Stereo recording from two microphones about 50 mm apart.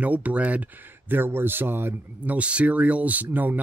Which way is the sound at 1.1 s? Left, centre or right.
Right.